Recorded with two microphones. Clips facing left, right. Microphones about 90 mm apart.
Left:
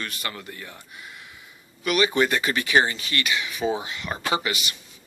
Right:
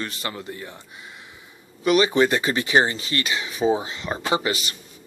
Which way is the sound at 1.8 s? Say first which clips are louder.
Right 4 dB; 30° right (ahead or behind).